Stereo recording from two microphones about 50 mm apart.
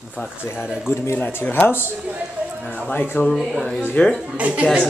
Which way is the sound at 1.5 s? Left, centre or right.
Left.